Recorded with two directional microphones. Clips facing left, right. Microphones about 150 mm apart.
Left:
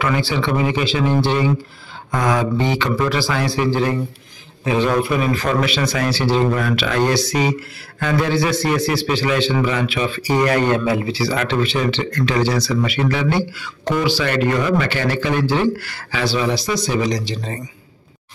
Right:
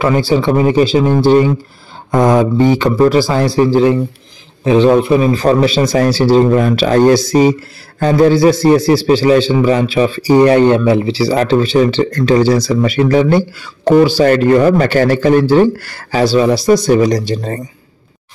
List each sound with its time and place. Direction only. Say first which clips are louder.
0.0 s a man's voice: right 8 dB; 40° right (ahead or behind)
2.0 s a sound: right 9 dB; 30° right (ahead or behind)
2.5 s a man's voice: right 8 dB; 45° right (ahead or behind)